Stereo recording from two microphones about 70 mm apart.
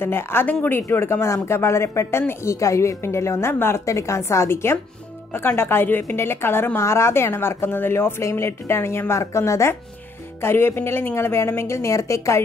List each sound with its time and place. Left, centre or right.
0.0 s a woman's voice: left
3.8 s a woman's voice: left